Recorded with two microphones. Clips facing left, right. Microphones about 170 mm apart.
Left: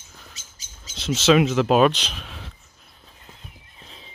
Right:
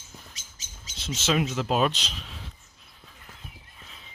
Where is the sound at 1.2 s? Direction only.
85° left; by 2.5 s 65° left (ahead or behind).